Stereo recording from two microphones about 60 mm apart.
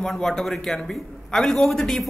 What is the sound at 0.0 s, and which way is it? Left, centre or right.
A man's voice, centre.